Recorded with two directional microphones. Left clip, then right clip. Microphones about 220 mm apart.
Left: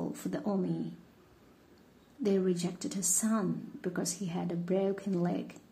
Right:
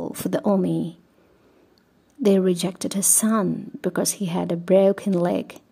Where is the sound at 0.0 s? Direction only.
45° right (ahead or behind).